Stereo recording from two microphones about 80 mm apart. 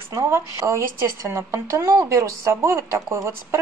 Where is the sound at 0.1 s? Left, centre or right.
Right.